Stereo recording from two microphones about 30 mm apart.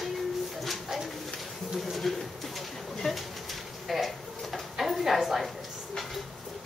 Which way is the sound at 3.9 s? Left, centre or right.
Centre.